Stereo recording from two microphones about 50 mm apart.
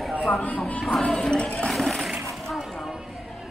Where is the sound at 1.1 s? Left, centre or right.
Centre.